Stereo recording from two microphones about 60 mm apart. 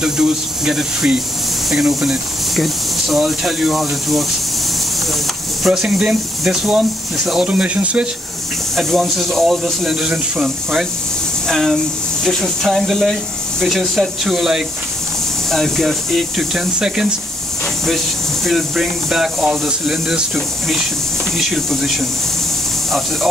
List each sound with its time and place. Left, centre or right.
0.0 s speech: centre
5.7 s speech: centre
7.2 s speech: centre
8.7 s speech: centre
10.0 s speech: centre
11.4 s speech: centre
15.5 s speech: centre
16.5 s speech: centre
17.8 s speech: centre